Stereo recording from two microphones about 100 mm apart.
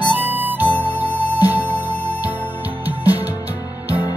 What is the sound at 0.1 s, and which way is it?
Music, 15° right (ahead or behind).